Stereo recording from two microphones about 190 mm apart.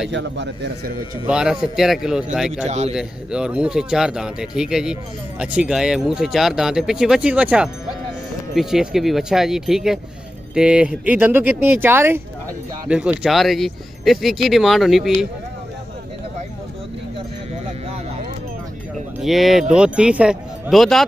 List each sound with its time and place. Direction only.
0.1 s a man's voice: 70° right (ahead or behind)
1.2 s speech: 5° right (ahead or behind)
2.6 s a man's voice: 35° right (ahead or behind)
2.9 s speech: 5° right (ahead or behind)
19.2 s speech: centre (ahead or behind)